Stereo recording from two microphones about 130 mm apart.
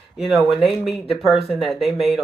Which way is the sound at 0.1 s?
Centre (ahead or behind).